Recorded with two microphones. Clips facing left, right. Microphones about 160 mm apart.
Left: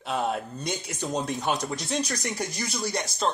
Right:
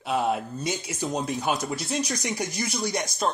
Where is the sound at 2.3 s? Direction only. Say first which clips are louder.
Right 2 dB; 15° right (ahead or behind).